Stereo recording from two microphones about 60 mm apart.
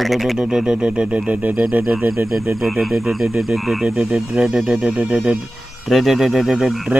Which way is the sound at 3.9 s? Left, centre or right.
Centre.